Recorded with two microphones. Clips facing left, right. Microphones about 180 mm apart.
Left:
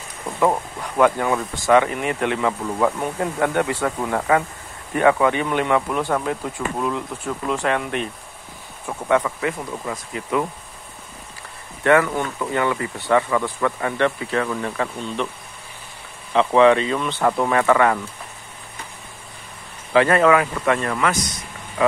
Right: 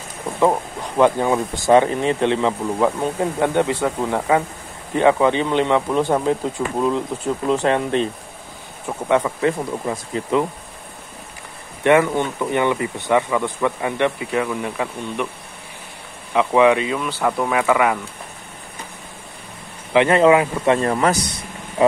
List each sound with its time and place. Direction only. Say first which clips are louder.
0.4 s speech: right 2 dB; 20° right (ahead or behind)
11.8 s speech: right 2 dB; 20° right (ahead or behind)
16.3 s speech: even; 10° right (ahead or behind)
19.9 s speech: right 2 dB; 20° right (ahead or behind)